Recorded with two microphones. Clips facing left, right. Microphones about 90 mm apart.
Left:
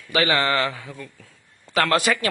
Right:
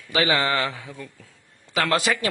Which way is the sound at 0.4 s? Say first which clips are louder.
Left 2 dB; 15° right (ahead or behind).